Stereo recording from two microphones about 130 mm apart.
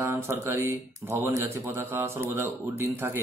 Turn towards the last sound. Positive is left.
turn(degrees=-15)  # may be behind; listen again after turning